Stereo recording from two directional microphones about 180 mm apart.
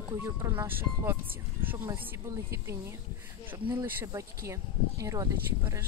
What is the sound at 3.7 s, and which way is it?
Speech, 10° right (ahead or behind).